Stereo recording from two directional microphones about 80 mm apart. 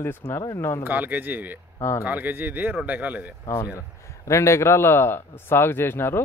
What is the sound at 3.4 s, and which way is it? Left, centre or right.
A man's voice, left.